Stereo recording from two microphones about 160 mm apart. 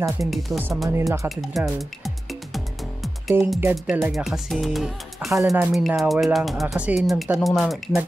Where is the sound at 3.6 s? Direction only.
10° right (ahead or behind).